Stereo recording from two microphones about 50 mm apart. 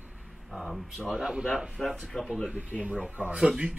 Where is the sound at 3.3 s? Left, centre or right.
Centre.